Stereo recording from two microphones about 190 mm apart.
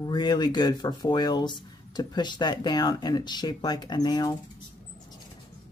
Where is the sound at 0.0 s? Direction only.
20° left (ahead or behind).